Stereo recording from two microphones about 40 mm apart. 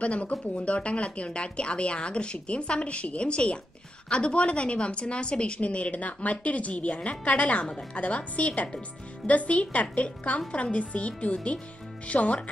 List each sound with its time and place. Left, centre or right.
0.0 s a woman's voice: left